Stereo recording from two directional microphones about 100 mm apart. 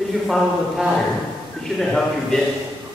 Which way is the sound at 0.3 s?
5° right (ahead or behind).